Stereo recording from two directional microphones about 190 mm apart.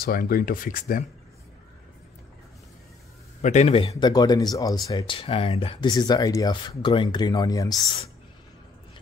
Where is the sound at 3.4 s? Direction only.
35° left (ahead or behind); by 7.9 s 20° left (ahead or behind).